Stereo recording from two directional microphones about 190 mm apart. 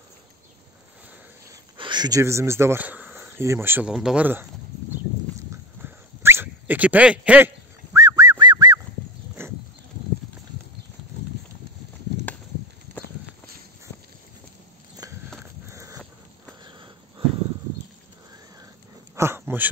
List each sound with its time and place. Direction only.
1.5 s speech: 25° right (ahead or behind)
5.5 s a sound: 15° right (ahead or behind)
15.7 s dog: 15° right (ahead or behind)
16.6 s wheeze: 25° right (ahead or behind)
19.1 s dog: 15° right (ahead or behind)